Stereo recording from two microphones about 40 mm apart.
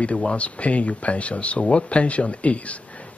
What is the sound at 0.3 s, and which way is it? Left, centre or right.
Speech, left.